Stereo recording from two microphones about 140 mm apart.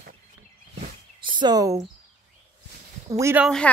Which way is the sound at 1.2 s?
35° right (ahead or behind).